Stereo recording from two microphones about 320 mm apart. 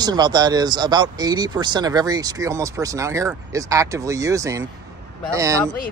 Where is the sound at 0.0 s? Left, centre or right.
Centre.